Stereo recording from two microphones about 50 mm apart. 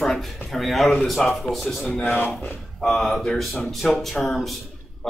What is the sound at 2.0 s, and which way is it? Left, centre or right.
Speech, left.